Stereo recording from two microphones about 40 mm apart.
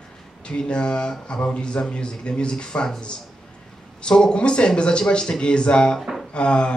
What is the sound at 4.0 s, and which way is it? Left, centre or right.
Speech, left.